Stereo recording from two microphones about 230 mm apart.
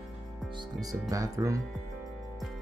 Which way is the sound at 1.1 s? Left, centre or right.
Centre.